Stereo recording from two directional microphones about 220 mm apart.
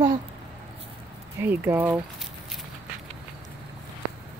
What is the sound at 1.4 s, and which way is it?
Speech, 10° right (ahead or behind).